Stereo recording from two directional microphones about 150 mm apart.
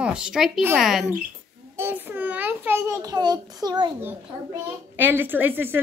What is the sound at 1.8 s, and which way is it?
A woman's voice, 15° right (ahead or behind).